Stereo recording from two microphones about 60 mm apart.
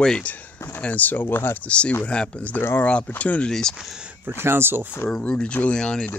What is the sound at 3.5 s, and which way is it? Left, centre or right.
Speech, centre.